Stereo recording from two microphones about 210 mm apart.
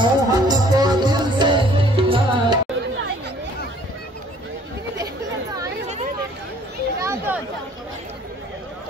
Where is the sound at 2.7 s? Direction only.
55° right (ahead or behind).